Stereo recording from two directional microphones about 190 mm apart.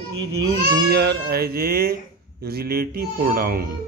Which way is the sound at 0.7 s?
55° right (ahead or behind).